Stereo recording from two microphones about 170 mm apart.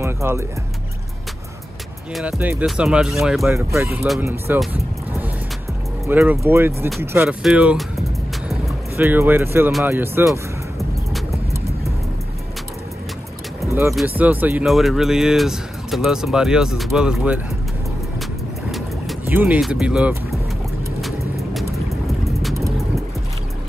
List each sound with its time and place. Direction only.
0.0 s speech: 15° right (ahead or behind)
2.1 s speech: 10° right (ahead or behind)
3.5 s speech: 15° right (ahead or behind)
6.0 s speech: 15° right (ahead or behind)
7.4 s speech: 5° right (ahead or behind)
8.9 s speech: 10° right (ahead or behind)
13.9 s speech: 10° right (ahead or behind)
18.7 s boat: centre (ahead or behind)
19.2 s speech: 10° right (ahead or behind)
22.4 s vehicle: centre (ahead or behind)